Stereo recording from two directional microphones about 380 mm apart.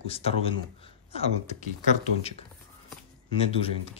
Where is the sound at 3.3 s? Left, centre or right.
Centre.